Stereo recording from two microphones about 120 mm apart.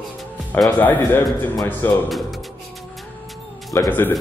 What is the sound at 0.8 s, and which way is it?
Speech, 15° left (ahead or behind).